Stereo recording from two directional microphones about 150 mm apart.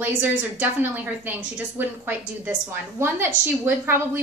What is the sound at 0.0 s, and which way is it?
A woman's voice, 10° right (ahead or behind).